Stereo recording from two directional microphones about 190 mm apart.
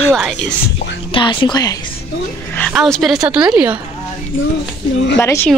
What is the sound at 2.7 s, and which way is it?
A woman's voice, centre (ahead or behind).